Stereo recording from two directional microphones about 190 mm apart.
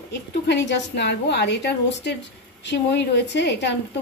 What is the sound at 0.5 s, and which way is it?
A woman's voice, 65° left (ahead or behind).